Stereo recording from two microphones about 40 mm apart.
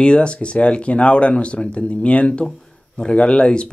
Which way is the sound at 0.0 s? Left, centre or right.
Left.